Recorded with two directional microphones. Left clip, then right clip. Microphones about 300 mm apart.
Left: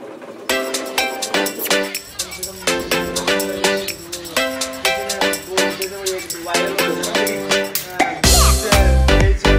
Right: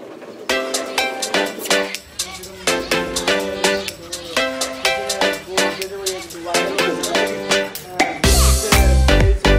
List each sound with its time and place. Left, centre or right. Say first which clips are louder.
0.5 s music: even; centre